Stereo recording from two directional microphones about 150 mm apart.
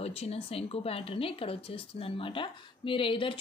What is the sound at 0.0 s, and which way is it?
Speech, 45° left (ahead or behind).